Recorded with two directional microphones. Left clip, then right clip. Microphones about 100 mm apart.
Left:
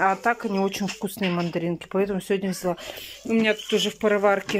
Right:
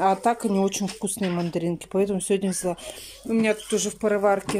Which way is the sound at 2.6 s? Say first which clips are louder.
Left 1 dB; 15° right (ahead or behind).